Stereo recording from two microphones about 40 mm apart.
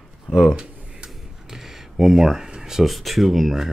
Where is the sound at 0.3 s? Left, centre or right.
Centre.